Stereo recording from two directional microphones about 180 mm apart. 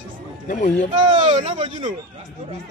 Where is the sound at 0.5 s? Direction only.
45° left (ahead or behind).